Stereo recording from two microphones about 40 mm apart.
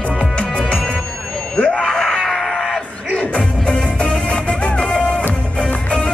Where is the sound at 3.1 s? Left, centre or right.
Left.